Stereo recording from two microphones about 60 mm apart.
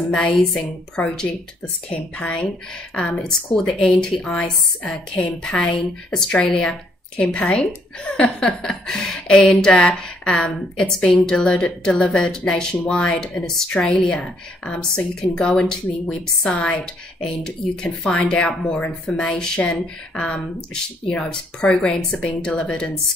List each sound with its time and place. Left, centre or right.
0.1 s speech: centre
2.4 s a woman's voice: centre